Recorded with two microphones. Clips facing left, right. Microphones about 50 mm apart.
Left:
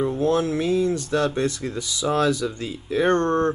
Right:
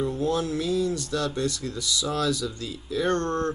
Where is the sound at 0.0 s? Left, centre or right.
Left.